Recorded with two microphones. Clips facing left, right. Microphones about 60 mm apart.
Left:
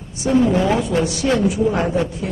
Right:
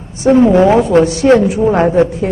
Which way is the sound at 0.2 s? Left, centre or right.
Right.